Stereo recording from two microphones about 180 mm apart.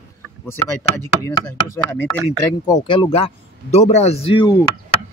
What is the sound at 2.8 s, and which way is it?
A man's voice, 30° left (ahead or behind).